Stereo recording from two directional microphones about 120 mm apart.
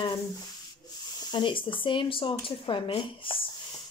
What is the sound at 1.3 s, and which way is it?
Speech, 45° left (ahead or behind).